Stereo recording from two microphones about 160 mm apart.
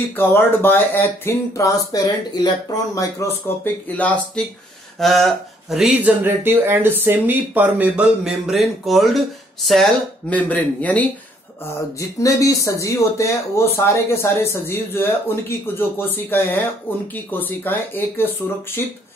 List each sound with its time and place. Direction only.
0.1 s speech: 15° left (ahead or behind)
4.9 s a sound: centre (ahead or behind)
6.2 s speech: 15° right (ahead or behind)
10.3 s speech: 10° left (ahead or behind)
12.2 s speech: 20° left (ahead or behind)